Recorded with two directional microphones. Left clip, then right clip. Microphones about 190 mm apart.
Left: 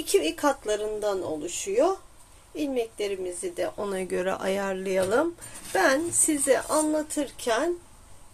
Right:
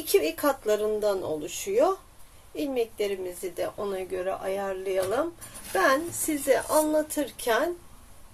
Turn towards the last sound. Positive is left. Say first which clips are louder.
# even
turn(degrees=5)  # may be behind; listen again after turning